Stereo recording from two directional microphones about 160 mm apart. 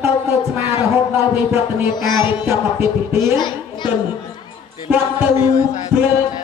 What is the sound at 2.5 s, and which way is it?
Music, 15° right (ahead or behind).